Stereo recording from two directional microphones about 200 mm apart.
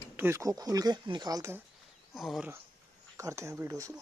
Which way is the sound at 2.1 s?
Centre (ahead or behind).